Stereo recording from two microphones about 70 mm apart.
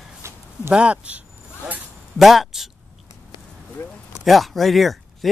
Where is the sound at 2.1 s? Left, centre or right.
Centre.